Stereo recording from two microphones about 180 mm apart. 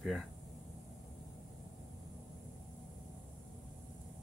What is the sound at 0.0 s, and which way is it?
Speech, centre (ahead or behind).